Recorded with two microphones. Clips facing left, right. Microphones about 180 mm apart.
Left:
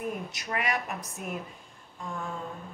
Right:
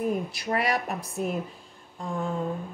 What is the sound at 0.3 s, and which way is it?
Speech, 35° right (ahead or behind).